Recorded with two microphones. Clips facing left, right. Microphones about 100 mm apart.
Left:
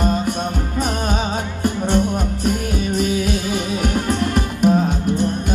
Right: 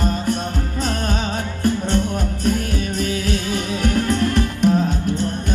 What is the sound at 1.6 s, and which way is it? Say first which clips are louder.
Music: left 1 dB; 15° left (ahead or behind).